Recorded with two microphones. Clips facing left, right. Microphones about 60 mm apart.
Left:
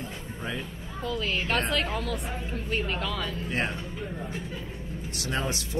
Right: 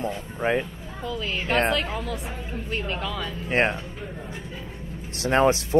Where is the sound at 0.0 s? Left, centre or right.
Right.